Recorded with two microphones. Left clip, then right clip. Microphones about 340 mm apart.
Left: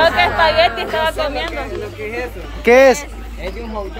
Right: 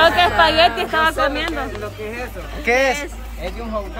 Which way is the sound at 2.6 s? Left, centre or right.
Centre.